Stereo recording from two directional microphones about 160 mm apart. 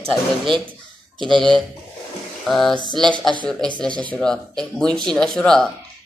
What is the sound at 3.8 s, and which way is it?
Speech, 5° left (ahead or behind).